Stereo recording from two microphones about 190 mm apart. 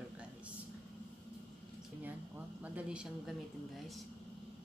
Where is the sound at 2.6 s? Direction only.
5° right (ahead or behind).